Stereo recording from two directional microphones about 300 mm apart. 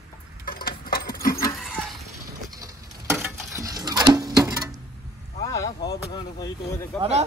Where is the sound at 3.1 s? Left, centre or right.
Centre.